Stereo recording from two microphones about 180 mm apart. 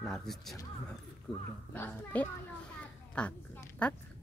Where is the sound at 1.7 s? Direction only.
10° left (ahead or behind).